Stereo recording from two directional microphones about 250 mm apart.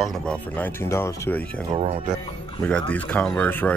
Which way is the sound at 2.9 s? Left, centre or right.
Centre.